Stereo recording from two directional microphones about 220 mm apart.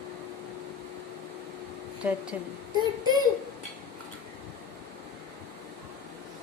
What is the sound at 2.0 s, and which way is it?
Speech, 5° right (ahead or behind).